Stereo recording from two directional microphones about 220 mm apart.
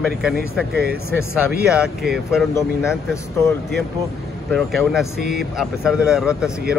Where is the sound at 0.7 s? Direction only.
45° right (ahead or behind).